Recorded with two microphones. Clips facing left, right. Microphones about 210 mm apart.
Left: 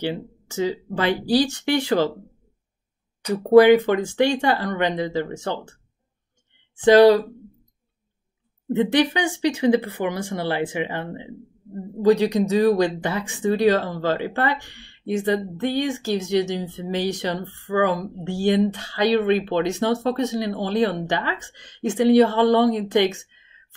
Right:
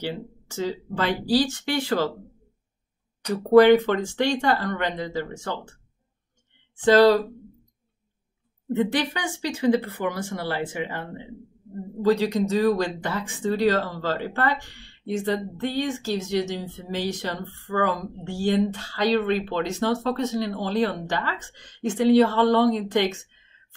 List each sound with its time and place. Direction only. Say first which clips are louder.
0.0 s speech: left 4 dB; 15° left (ahead or behind)
3.5 s speech: left 2 dB; 10° left (ahead or behind)
6.8 s speech: left 4 dB; 15° left (ahead or behind)
8.7 s speech: left 5 dB; 20° left (ahead or behind)